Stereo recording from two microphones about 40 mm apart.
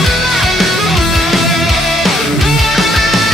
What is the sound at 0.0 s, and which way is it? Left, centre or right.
Music, centre.